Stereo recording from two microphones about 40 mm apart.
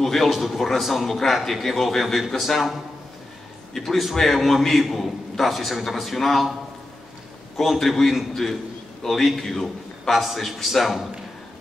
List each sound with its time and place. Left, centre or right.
0.0 s a man's voice: centre
7.8 s a man's voice: centre
8.1 s a man's voice: centre